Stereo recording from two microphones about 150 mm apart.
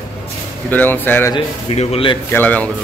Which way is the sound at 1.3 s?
40° left (ahead or behind).